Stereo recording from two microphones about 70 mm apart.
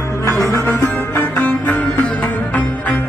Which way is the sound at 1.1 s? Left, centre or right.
Left.